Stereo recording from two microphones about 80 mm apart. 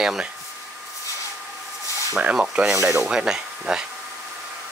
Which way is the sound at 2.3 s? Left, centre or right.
Centre.